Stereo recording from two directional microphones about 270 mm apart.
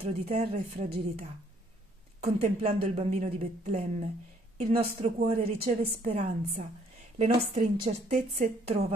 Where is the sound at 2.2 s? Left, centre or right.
Right.